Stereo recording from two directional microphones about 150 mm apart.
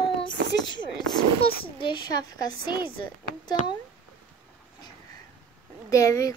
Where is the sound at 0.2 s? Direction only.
30° left (ahead or behind).